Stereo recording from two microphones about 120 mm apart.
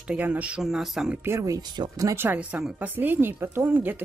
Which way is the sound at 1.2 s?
25° right (ahead or behind).